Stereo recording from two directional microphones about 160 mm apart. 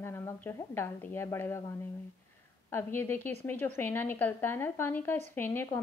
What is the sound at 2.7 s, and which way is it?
Speech, 15° left (ahead or behind).